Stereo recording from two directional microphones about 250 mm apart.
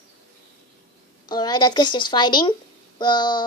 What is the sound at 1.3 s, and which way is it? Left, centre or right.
A woman's voice, centre.